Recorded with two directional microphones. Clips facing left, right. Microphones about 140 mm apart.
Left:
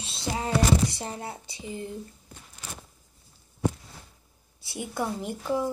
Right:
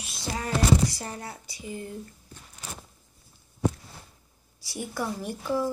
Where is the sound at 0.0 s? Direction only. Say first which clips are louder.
Left 2 dB; 25° left (ahead or behind).